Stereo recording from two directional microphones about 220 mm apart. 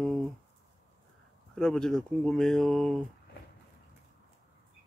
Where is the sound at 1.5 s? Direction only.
5° left (ahead or behind).